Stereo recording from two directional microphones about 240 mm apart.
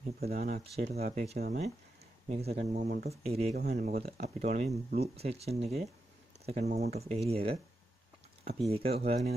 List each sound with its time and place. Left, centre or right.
0.4 s speech: right
8.6 s speech: right